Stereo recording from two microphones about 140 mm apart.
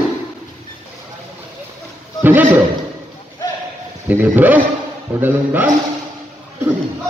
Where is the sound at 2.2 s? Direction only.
15° right (ahead or behind).